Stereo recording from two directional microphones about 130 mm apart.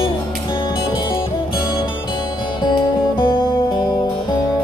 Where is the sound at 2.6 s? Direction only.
40° left (ahead or behind).